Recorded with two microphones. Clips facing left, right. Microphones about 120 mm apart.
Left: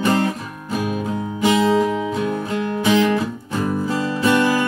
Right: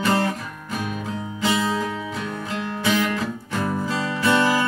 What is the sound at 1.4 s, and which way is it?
Music, 20° left (ahead or behind).